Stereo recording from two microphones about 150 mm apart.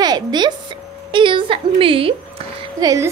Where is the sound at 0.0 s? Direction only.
30° right (ahead or behind).